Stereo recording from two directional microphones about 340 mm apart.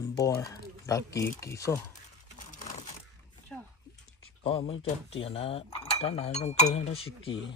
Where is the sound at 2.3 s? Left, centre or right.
Left.